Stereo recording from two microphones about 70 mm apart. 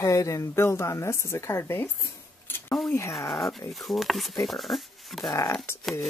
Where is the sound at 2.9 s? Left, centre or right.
Left.